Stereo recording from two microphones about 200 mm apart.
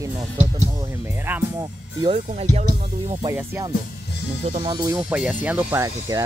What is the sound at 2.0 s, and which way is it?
Speech, 30° right (ahead or behind).